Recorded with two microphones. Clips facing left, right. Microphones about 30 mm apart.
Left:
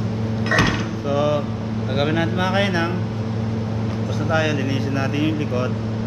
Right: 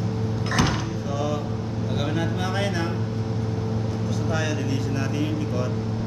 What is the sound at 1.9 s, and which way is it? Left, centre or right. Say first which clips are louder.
Speech: left 7 dB; left.